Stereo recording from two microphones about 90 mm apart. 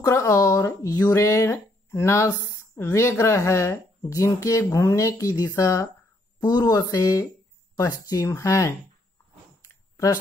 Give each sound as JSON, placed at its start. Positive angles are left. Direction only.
{"t": 0.1, "sound": "speech", "side_deg": 35}